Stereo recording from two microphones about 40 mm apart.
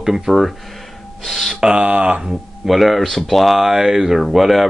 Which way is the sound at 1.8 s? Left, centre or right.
Right.